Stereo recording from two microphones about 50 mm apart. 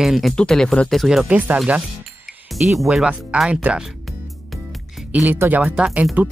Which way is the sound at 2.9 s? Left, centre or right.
Centre.